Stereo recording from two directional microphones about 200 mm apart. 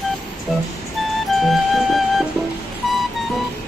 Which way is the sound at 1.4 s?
Centre (ahead or behind).